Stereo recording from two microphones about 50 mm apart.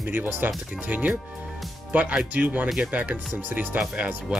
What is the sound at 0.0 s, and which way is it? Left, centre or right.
Speech, right.